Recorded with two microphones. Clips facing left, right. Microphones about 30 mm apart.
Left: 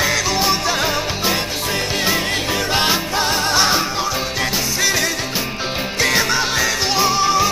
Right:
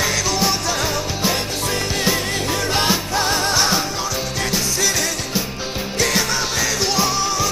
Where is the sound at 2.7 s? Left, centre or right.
Centre.